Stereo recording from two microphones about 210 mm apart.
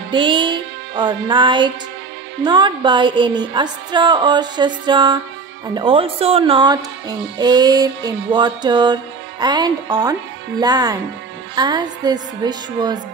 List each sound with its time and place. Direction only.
0.1 s speech: 20° right (ahead or behind)